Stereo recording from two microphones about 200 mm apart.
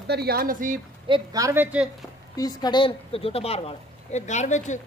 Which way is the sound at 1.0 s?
20° right (ahead or behind).